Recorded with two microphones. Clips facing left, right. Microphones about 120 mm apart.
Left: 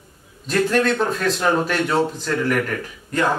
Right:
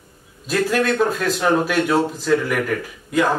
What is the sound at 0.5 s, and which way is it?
A man's voice, 5° right (ahead or behind).